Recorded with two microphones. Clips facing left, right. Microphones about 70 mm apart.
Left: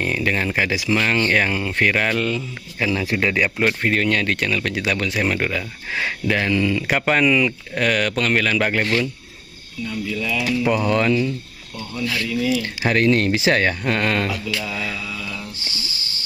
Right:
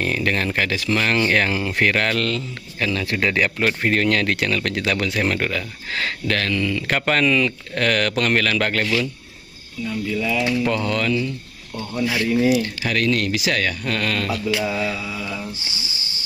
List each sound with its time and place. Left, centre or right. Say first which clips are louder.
0.0 s speech: even; centre
1.9 s speech: left 1 dB; centre
9.8 s speech: right 2 dB; centre
10.6 s speech: left 3 dB; centre
11.7 s speech: right 3 dB; right
12.6 s speech: left 3 dB; left
14.4 s speech: right 4 dB; right